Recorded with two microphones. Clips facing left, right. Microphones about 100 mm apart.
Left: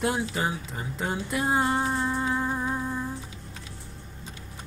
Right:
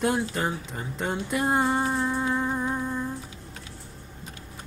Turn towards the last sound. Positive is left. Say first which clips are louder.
# right 1 dB
turn(degrees=5)  # may be behind; listen again after turning